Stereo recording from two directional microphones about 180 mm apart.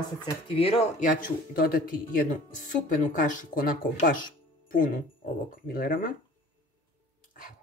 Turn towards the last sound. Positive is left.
turn(degrees=50)  # may be behind; listen again after turning